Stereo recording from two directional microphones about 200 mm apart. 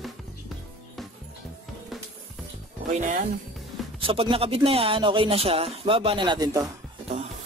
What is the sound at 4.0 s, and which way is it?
Speech, 25° right (ahead or behind).